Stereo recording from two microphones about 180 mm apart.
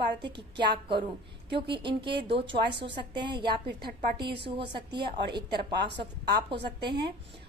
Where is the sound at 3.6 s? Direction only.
60° right (ahead or behind).